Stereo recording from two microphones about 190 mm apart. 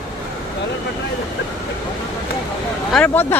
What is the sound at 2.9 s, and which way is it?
Speech, 10° left (ahead or behind).